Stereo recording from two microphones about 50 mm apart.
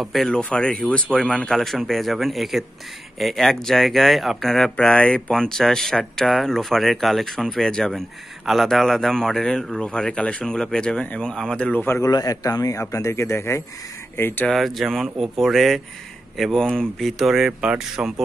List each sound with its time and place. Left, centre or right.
0.0 s speech: centre
0.3 s speech: left
1.5 s speech: centre
4.7 s speech: left
5.3 s a man's voice: centre
8.5 s a man's voice: centre
12.9 s speech: left
14.1 s speech: left
14.5 s speech: centre
16.5 s a man's voice: centre
17.0 s speech: centre